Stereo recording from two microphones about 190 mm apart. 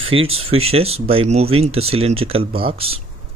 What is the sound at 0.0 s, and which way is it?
Speech, 30° right (ahead or behind).